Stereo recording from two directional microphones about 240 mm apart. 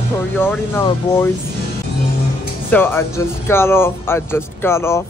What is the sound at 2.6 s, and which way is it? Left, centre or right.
Speech, centre.